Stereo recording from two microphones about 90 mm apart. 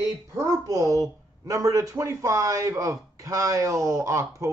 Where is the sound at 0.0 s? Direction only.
35° right (ahead or behind).